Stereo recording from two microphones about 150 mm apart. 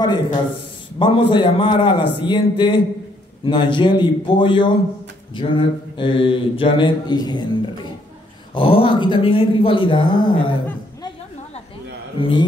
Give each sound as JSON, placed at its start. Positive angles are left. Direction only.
{"t": 0.0, "sound": "a man's voice", "side_deg": 30}
{"t": 0.9, "sound": "mantra", "side_deg": 35}
{"t": 12.2, "sound": "mantra", "side_deg": 35}